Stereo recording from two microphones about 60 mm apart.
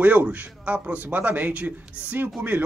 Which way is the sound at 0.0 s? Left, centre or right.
Right.